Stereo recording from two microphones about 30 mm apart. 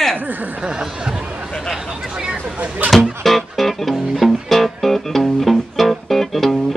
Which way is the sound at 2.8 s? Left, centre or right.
Right.